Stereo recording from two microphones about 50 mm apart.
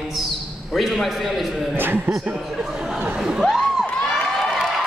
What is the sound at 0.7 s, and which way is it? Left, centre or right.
A man's voice, centre.